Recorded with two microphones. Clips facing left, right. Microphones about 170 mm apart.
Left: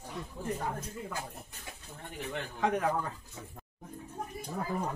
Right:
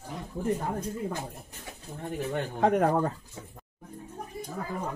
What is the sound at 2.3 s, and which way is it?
Speech, 45° right (ahead or behind).